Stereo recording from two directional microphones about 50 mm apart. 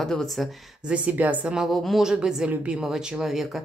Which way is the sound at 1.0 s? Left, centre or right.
Right.